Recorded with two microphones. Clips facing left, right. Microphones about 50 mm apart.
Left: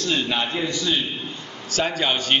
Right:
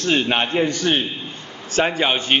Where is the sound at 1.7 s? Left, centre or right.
Right.